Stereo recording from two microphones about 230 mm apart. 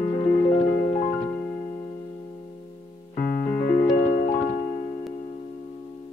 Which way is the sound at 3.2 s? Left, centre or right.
Left.